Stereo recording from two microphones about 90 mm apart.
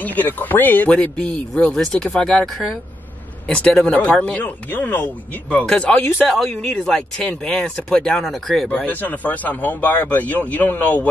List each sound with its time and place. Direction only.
0.0 s speech: 20° left (ahead or behind); by 8.6 s 5° left (ahead or behind)
8.6 s a man's voice: 20° left (ahead or behind)